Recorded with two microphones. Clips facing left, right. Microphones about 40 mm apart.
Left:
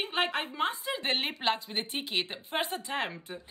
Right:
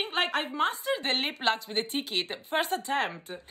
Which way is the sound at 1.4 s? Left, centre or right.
Centre.